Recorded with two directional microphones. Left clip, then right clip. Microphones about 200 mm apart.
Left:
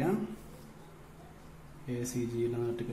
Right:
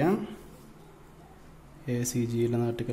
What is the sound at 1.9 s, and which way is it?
Speech, 50° right (ahead or behind).